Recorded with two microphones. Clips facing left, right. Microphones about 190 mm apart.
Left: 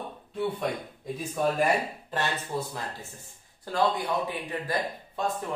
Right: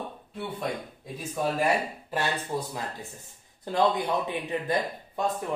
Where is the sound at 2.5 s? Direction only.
15° right (ahead or behind).